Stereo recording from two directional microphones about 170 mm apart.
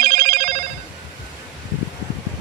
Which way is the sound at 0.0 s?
45° right (ahead or behind).